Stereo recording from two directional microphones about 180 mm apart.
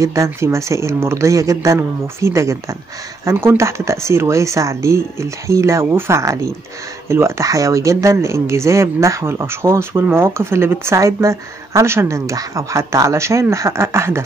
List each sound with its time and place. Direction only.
0.0 s speech: 15° right (ahead or behind)